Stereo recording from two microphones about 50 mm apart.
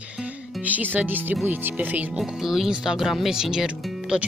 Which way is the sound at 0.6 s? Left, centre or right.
Right.